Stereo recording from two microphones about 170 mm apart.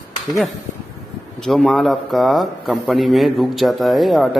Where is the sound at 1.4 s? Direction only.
Centre (ahead or behind).